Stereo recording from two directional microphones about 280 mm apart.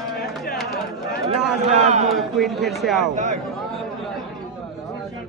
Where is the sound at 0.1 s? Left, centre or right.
Left.